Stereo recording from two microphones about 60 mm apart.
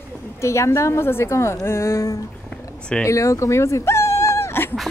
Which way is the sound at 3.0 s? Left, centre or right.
Left.